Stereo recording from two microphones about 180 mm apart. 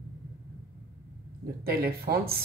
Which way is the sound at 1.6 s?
60° right (ahead or behind).